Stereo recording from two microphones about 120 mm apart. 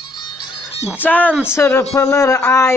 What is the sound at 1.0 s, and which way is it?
A man's voice, 15° left (ahead or behind).